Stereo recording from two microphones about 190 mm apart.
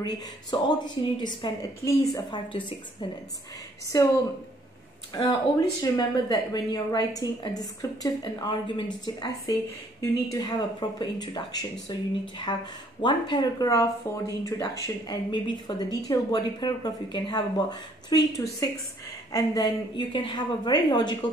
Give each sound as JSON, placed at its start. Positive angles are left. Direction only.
{"t": 0.0, "sound": "speech", "side_deg": 20}
{"t": 5.1, "sound": "speech", "side_deg": 20}